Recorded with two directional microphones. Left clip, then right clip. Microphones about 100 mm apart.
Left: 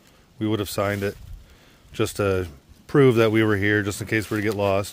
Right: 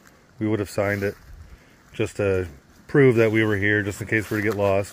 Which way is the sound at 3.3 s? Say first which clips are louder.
Even; 75° left (ahead or behind).